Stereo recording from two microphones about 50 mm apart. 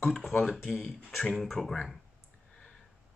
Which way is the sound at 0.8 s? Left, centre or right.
Centre.